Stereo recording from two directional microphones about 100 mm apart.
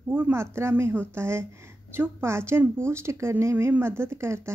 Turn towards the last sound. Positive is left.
turn(degrees=-25)  # may be behind; listen again after turning